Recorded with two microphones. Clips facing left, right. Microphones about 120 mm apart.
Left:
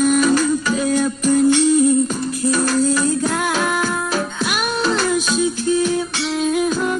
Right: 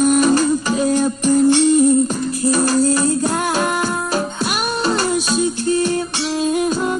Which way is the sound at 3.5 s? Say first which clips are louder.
Right 1 dB; 5° right (ahead or behind).